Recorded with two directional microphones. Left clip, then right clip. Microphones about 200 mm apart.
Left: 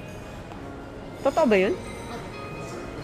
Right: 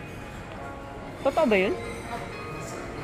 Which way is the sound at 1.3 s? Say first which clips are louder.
Left 2 dB; 15° left (ahead or behind).